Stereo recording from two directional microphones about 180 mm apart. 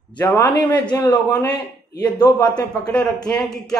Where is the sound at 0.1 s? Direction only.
20° left (ahead or behind).